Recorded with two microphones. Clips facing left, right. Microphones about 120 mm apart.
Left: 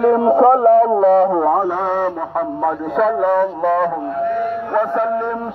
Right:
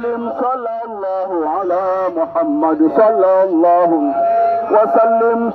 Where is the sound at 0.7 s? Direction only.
60° left (ahead or behind).